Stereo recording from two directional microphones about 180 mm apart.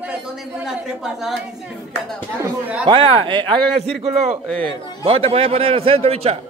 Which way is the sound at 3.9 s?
Centre (ahead or behind).